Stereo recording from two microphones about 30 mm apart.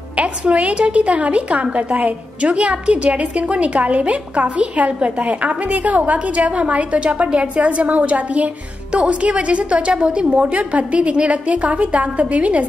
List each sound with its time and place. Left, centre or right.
0.2 s a woman's voice: right